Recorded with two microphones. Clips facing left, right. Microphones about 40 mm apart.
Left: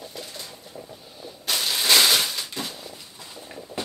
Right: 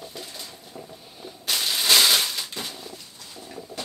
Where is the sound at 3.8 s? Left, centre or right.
Left.